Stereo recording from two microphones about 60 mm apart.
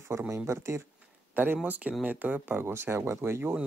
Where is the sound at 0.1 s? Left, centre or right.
Right.